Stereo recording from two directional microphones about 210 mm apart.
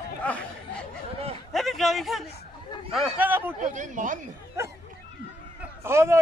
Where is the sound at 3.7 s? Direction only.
35° right (ahead or behind).